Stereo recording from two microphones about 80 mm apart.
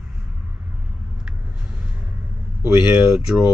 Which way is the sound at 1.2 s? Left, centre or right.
Centre.